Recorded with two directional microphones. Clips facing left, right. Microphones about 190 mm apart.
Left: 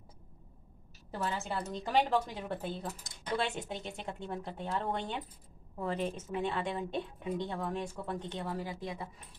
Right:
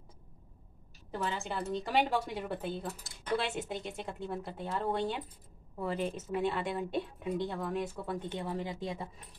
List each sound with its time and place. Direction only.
1.1 s a woman's voice: centre (ahead or behind)
8.5 s speech: 20° right (ahead or behind)